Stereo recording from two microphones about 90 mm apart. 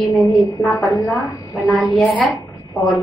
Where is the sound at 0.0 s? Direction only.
Centre (ahead or behind).